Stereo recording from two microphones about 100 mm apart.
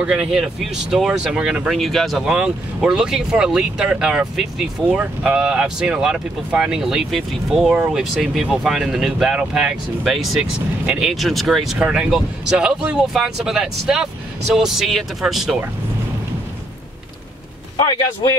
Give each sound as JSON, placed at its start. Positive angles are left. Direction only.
{"t": 0.0, "sound": "speech", "side_deg": -5}
{"t": 17.7, "sound": "a man's voice", "side_deg": 45}